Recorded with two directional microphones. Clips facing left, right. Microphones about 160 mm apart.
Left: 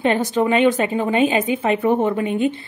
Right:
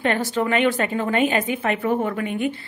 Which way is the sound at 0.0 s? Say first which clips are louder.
Left 4 dB; 20° left (ahead or behind).